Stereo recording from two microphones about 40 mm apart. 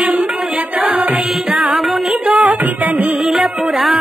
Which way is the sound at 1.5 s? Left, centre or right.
Centre.